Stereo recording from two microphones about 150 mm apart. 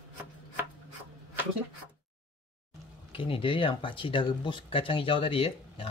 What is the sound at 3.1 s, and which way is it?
Speech, 35° left (ahead or behind).